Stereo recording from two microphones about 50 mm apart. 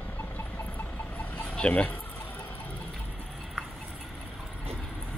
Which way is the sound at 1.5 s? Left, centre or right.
Left.